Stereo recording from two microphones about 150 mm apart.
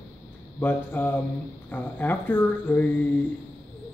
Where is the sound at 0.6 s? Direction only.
10° left (ahead or behind).